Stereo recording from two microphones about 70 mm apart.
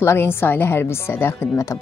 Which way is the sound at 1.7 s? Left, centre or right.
Left.